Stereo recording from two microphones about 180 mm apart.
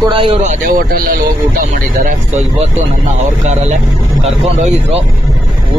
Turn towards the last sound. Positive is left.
turn(degrees=-35)  # may be behind; listen again after turning